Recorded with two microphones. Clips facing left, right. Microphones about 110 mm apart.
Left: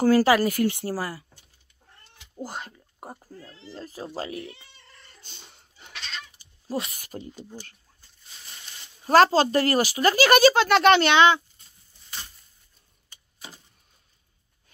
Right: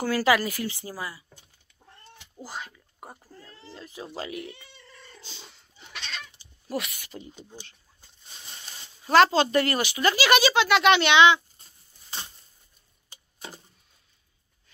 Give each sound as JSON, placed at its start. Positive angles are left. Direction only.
{"t": 0.0, "sound": "speech", "side_deg": 35}
{"t": 0.7, "sound": "speech", "side_deg": 65}
{"t": 3.7, "sound": "speech", "side_deg": 40}
{"t": 5.2, "sound": "cat", "side_deg": 50}
{"t": 6.7, "sound": "speech", "side_deg": 35}
{"t": 9.0, "sound": "speech", "side_deg": 35}